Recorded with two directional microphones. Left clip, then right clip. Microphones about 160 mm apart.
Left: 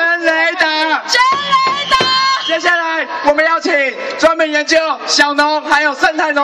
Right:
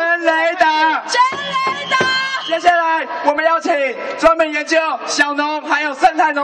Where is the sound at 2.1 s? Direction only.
40° right (ahead or behind).